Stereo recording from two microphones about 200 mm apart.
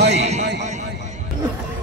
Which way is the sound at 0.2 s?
35° right (ahead or behind).